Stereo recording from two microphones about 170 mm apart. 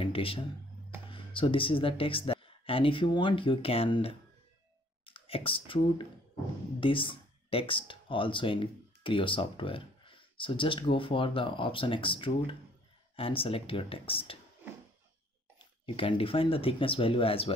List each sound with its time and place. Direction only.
0.0 s a sound: 30° left (ahead or behind)
1.1 s speech: 30° left (ahead or behind)
15.6 s speech: 30° left (ahead or behind)